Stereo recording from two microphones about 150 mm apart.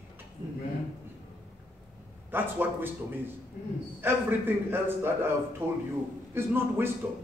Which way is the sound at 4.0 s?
15° right (ahead or behind).